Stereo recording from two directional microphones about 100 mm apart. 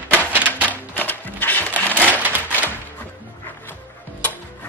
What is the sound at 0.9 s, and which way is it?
Music, 15° left (ahead or behind).